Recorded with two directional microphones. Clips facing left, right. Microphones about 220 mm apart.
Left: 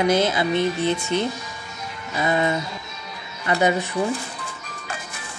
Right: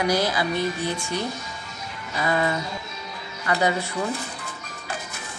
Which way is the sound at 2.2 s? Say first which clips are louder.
Left 2 dB; 20° left (ahead or behind).